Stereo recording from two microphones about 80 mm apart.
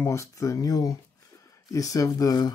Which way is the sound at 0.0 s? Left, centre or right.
Left.